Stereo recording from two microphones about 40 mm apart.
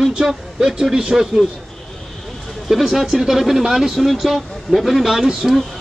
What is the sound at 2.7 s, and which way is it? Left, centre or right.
Speech, centre.